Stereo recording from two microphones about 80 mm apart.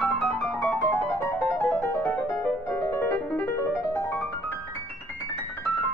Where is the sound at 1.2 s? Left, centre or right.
Left.